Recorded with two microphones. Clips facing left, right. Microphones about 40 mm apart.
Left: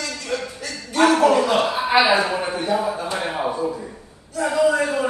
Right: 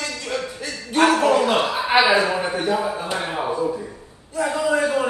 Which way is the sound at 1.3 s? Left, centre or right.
Right.